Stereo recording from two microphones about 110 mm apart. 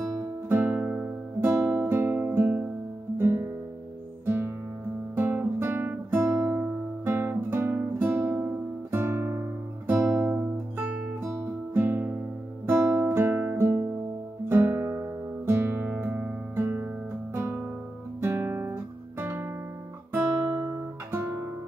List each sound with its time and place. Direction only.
0.1 s music: 20° right (ahead or behind)
5.1 s guitar: 20° right (ahead or behind)
13.0 s music: 20° right (ahead or behind)
20.1 s guitar: 25° right (ahead or behind)